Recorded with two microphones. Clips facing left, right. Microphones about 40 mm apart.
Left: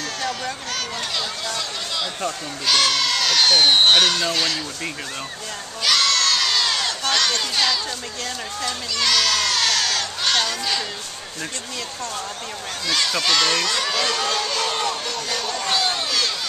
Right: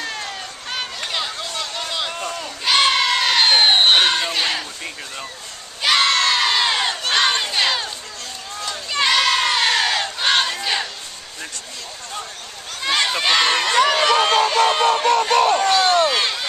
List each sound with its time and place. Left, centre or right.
0.0 s run: right
3.8 s speech: right
5.8 s crowd: right
8.9 s crowd: right
12.8 s speech: right
14.8 s speech: right
16.1 s a sound: right